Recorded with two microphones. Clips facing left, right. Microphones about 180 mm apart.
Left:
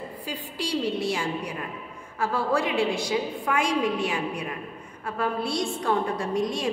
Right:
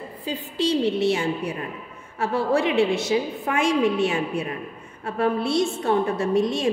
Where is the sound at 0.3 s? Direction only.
25° right (ahead or behind).